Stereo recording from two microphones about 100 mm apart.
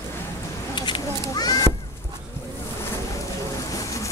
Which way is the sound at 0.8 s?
55° left (ahead or behind).